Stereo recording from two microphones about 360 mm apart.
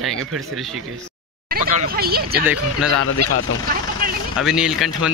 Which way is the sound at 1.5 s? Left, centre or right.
Right.